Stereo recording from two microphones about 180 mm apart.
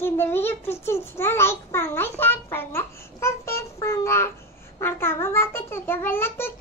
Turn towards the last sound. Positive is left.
turn(degrees=15)  # may be behind; listen again after turning